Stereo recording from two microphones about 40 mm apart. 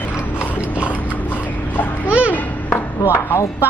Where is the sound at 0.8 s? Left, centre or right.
Left.